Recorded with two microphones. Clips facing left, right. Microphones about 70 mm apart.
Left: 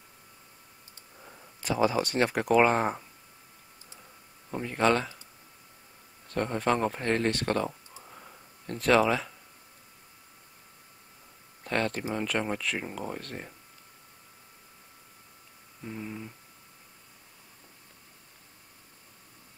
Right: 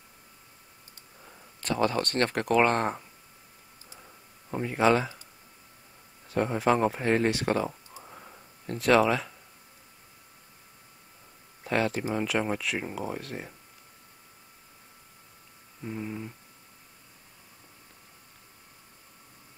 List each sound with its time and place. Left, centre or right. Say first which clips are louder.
1.1 s speech: left 2 dB; centre
4.0 s clicking: right 1 dB; centre
6.2 s speech: right 3 dB; centre
8.0 s a sound: right 2 dB; centre
11.6 s speech: right 2 dB; centre
15.8 s speech: right 3 dB; centre